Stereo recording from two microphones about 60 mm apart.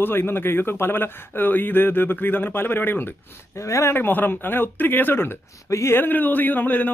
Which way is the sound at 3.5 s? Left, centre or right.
Left.